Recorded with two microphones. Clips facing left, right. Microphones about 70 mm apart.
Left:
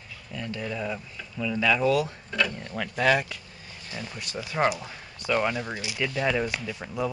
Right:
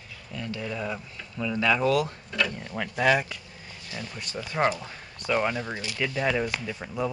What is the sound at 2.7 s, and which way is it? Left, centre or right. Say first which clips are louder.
Speech: even; centre.